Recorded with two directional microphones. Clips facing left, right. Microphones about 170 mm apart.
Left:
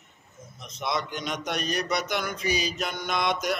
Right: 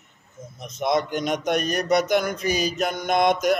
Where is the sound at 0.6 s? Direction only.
50° right (ahead or behind).